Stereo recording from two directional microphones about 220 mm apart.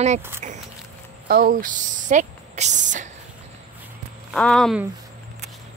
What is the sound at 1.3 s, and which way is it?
Speech, 40° right (ahead or behind).